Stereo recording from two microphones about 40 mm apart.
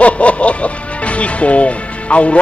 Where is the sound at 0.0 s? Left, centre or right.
Left.